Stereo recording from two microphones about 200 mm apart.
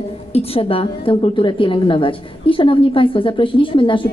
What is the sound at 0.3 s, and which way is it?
A woman's voice, 30° left (ahead or behind).